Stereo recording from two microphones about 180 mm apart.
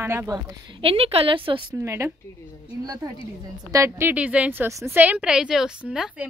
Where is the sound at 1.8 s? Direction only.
15° right (ahead or behind).